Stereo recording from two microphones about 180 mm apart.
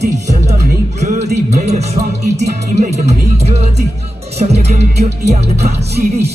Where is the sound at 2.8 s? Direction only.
35° right (ahead or behind).